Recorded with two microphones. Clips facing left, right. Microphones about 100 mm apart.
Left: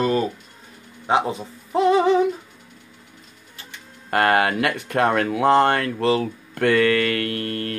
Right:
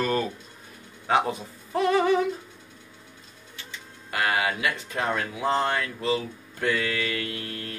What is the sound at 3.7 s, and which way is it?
Speech, 50° left (ahead or behind).